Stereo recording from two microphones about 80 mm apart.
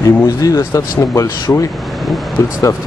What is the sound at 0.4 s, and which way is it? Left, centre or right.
Speech, left.